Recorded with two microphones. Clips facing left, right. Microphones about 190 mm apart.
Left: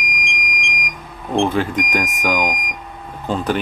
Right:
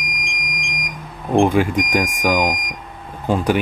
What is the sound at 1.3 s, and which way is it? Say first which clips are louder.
Speech: right 3 dB; 15° right (ahead or behind).